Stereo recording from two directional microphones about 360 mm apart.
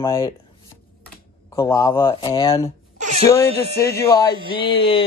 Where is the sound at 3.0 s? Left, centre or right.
Centre.